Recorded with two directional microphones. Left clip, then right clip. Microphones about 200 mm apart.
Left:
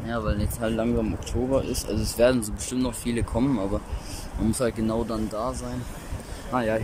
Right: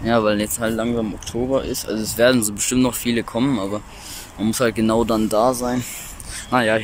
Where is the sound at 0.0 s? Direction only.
20° right (ahead or behind).